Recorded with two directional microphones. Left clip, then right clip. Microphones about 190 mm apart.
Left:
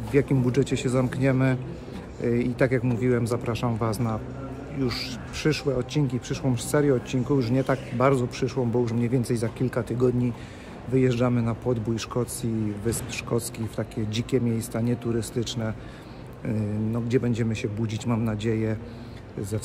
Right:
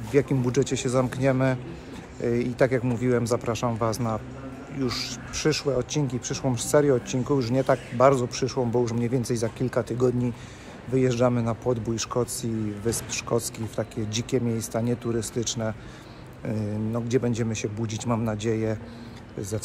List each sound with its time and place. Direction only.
0.1 s speech: 10° left (ahead or behind)